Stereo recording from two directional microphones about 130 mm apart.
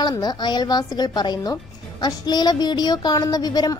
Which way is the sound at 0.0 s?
30° left (ahead or behind).